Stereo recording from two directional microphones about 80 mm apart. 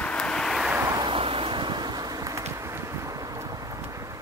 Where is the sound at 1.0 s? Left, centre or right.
Right.